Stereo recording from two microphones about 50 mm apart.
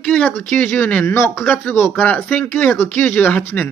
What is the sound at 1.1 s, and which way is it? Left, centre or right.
Speech, left.